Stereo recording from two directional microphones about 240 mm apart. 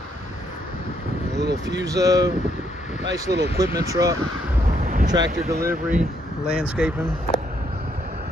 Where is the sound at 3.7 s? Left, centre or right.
Centre.